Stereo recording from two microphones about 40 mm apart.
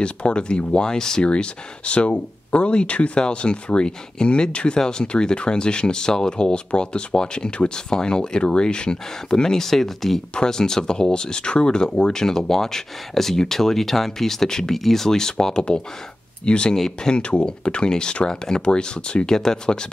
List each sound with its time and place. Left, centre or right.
0.0 s speech: left
1.2 s speech: left; by 10.2 s centre
10.3 s speech: centre
16.7 s speech: centre